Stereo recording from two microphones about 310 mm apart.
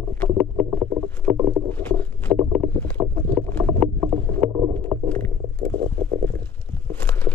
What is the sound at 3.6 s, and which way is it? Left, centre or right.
Vehicle, centre.